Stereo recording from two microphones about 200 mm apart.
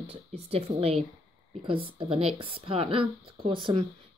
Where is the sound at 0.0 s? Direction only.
30° right (ahead or behind).